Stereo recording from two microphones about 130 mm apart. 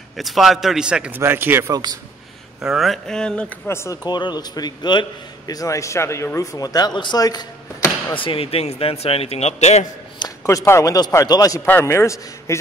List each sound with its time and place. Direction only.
0.2 s a man's voice: centre (ahead or behind); by 1.7 s 15° right (ahead or behind)
1.7 s a man's voice: 30° right (ahead or behind)
2.6 s a man's voice: centre (ahead or behind)
3.6 s a man's voice: 20° left (ahead or behind)
4.0 s speech: 35° left (ahead or behind); by 9.8 s 60° left (ahead or behind)
10.1 s a man's voice: 30° left (ahead or behind)
11.6 s a man's voice: 15° left (ahead or behind)